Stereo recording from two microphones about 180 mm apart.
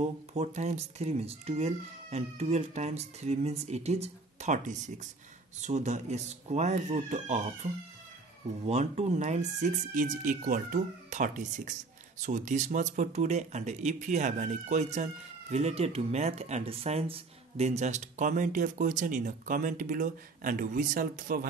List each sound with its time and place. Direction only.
0.0 s speech: 40° right (ahead or behind)
8.6 s speech: 40° right (ahead or behind)